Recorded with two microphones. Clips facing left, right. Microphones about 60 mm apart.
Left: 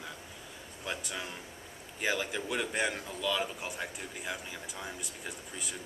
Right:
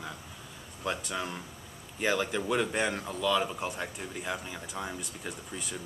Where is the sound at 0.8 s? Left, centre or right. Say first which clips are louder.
Right 5 dB; centre.